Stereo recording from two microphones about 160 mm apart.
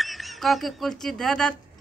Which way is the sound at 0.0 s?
Centre (ahead or behind).